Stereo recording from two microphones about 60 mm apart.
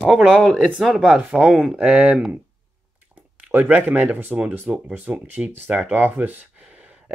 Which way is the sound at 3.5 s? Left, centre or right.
Right.